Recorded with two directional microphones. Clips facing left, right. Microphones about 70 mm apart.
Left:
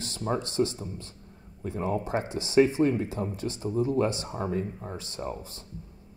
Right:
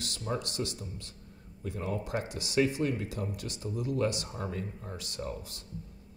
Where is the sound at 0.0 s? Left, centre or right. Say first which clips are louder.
Left 5 dB; left.